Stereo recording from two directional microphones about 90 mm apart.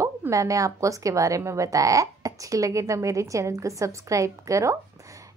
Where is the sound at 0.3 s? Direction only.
35° right (ahead or behind).